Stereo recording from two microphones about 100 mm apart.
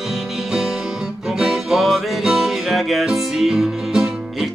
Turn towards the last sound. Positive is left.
turn(degrees=-5)  # may be behind; listen again after turning